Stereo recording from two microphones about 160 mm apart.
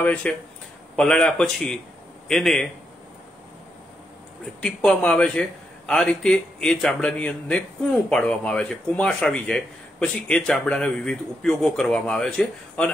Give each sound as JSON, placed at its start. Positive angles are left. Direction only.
{"t": 0.0, "sound": "a man's voice", "side_deg": 10}
{"t": 4.6, "sound": "a man's voice", "side_deg": 5}